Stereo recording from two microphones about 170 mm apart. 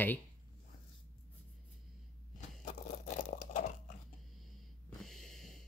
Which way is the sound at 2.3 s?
50° left (ahead or behind).